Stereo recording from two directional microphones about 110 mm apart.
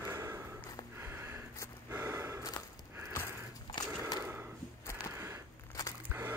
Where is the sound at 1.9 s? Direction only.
20° right (ahead or behind).